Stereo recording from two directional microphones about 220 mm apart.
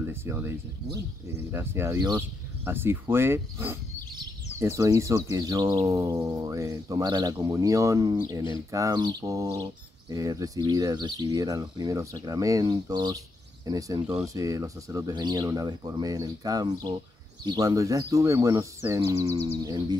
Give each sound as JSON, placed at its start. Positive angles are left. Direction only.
{"t": 0.1, "sound": "speech", "side_deg": -10}